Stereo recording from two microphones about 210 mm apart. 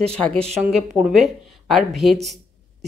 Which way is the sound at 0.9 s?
5° right (ahead or behind).